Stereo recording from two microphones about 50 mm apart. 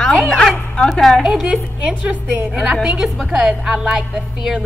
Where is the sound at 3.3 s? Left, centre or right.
Centre.